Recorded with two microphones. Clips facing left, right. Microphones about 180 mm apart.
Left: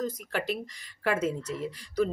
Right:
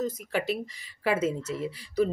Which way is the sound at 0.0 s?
5° right (ahead or behind).